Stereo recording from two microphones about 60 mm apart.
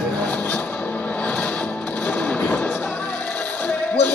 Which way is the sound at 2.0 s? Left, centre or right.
Left.